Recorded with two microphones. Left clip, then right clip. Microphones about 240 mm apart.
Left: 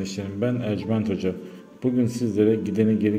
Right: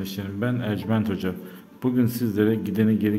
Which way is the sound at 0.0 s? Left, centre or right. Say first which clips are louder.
Left 2 dB; centre.